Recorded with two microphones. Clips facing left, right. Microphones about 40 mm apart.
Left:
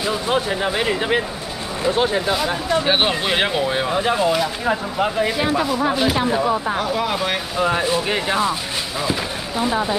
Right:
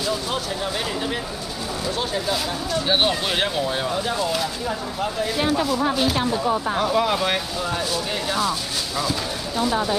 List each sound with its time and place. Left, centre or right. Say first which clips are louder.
0.0 s speech: left 4 dB; left
0.5 s speech: left 6 dB; left
6.8 s speech: right 1 dB; centre
7.6 s speech: left 6 dB; left